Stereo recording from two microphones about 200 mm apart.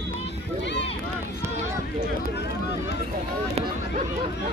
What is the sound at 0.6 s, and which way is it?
Run, 60° left (ahead or behind).